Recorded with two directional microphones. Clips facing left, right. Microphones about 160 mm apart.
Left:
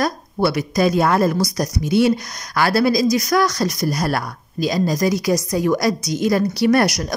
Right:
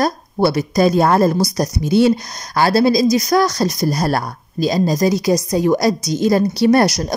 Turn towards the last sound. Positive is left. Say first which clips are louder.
# right 3 dB
turn(degrees=-25)  # may be behind; listen again after turning